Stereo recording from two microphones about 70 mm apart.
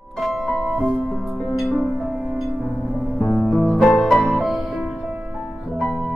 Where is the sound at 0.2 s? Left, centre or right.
Centre.